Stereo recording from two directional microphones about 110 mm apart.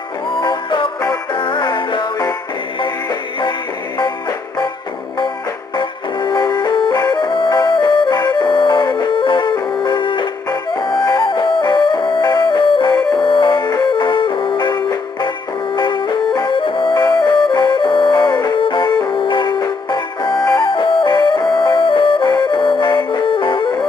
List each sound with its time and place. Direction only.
0.4 s music: 45° left (ahead or behind)
5.8 s music: 45° left (ahead or behind)